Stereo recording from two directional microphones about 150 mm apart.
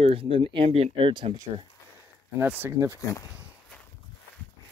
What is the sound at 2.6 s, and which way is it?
Speech, 20° right (ahead or behind).